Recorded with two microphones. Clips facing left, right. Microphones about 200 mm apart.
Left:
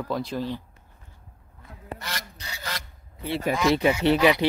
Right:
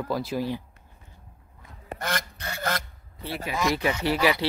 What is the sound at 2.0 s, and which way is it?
Goose, 50° right (ahead or behind).